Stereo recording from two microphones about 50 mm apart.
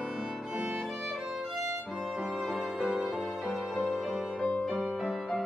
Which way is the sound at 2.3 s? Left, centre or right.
Centre.